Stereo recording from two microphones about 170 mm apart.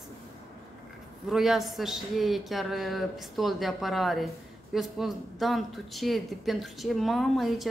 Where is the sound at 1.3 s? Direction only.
Centre (ahead or behind).